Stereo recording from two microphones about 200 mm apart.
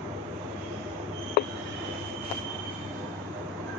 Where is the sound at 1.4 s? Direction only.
55° left (ahead or behind).